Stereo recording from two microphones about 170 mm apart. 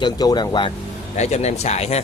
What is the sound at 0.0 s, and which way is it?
Speech, 25° left (ahead or behind).